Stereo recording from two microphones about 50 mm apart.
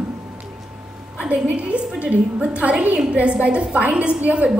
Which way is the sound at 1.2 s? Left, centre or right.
Right.